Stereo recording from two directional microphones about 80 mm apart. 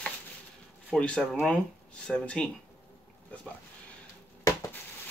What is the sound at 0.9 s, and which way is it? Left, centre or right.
Speech, centre.